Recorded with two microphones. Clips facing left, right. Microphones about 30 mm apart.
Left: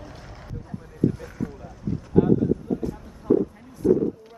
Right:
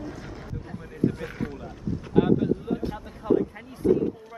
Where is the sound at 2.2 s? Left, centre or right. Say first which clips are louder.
Left 2 dB; right.